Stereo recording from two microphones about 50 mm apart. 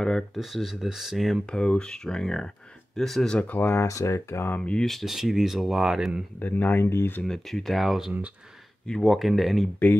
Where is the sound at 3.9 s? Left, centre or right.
Left.